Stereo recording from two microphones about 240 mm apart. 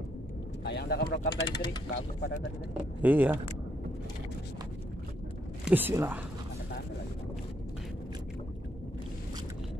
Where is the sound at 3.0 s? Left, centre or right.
Centre.